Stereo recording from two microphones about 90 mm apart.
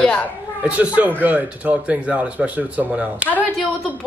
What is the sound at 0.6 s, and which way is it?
Speech, 15° right (ahead or behind).